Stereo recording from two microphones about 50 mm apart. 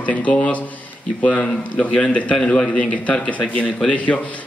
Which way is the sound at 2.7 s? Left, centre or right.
Left.